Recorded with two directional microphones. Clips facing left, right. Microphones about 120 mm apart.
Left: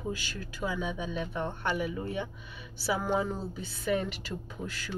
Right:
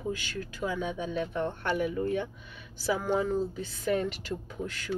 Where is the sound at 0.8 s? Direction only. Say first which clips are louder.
Right 2 dB; 15° left (ahead or behind).